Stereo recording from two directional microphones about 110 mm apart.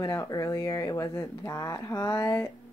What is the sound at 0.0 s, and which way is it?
Speech, 30° left (ahead or behind).